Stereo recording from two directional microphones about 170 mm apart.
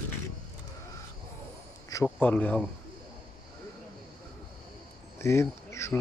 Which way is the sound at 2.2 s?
10° left (ahead or behind).